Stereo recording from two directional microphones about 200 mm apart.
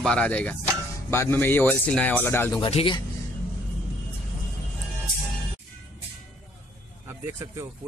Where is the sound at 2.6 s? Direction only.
25° left (ahead or behind).